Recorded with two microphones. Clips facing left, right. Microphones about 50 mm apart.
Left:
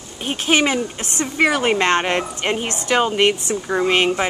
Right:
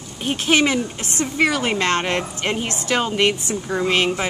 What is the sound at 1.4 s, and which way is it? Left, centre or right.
Speech, left.